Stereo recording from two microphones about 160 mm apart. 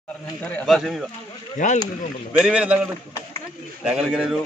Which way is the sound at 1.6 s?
50° left (ahead or behind).